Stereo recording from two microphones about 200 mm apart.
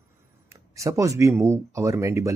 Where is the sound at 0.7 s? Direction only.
15° right (ahead or behind).